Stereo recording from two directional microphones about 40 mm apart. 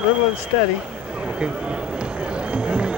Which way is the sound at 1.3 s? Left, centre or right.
Right.